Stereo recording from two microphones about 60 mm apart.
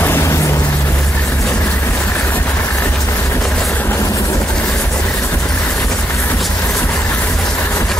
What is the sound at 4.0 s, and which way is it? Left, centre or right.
Vehicle, left.